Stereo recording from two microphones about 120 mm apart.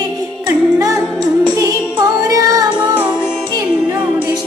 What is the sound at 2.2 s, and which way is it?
Music, 30° right (ahead or behind).